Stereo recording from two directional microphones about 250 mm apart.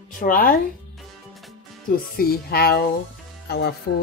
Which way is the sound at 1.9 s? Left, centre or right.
Left.